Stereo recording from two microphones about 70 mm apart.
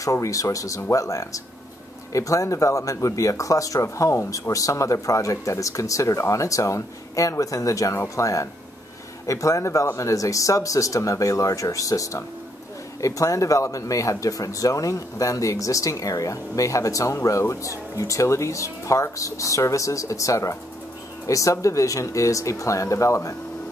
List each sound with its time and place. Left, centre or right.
0.0 s speech: left